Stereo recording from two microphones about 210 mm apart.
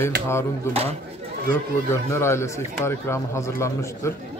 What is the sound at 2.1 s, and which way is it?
Speech, 10° left (ahead or behind).